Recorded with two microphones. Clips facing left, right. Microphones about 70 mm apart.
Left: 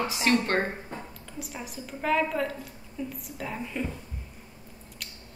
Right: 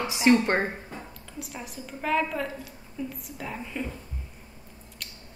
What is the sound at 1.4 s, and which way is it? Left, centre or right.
A woman's voice, centre.